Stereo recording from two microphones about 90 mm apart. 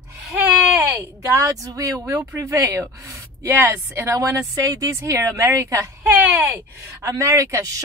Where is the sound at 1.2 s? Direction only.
35° right (ahead or behind).